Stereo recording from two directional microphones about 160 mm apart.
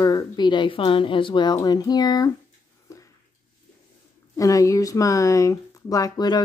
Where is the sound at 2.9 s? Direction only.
20° left (ahead or behind).